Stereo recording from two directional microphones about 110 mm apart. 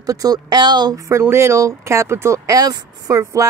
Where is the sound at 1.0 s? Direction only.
25° right (ahead or behind).